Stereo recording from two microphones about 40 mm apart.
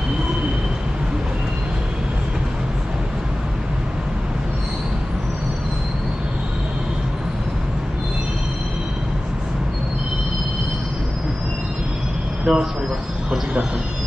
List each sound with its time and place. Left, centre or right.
12.5 s train: centre